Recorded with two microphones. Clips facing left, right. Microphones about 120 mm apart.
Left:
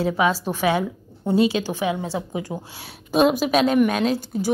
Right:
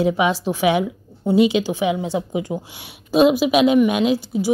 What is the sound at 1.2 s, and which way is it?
A woman's voice, 15° right (ahead or behind).